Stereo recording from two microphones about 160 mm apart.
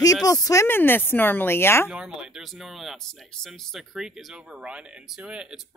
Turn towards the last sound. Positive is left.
turn(degrees=-5)  # may be behind; listen again after turning